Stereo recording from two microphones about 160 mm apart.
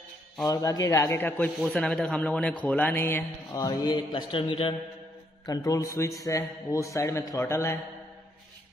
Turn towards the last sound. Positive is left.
turn(degrees=15)  # may be behind; listen again after turning